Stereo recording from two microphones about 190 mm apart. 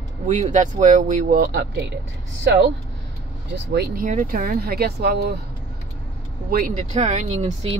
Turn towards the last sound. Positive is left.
turn(degrees=-35)  # may be behind; listen again after turning